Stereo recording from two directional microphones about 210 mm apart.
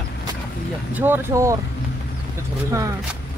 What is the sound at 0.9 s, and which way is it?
Speech, 10° right (ahead or behind).